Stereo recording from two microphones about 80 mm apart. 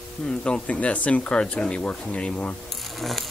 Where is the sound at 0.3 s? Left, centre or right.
Centre.